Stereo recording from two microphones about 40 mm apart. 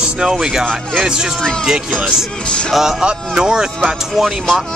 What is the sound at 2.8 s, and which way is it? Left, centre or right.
Speech, centre.